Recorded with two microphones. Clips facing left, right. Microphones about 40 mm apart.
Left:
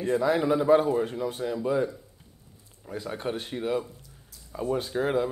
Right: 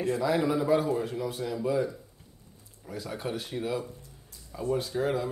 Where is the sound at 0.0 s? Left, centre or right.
Left.